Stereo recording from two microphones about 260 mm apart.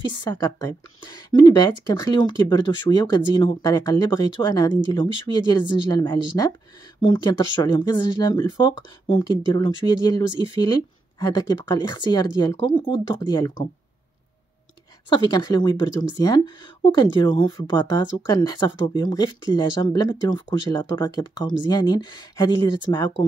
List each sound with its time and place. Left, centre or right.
0.1 s speech: centre
15.0 s speech: centre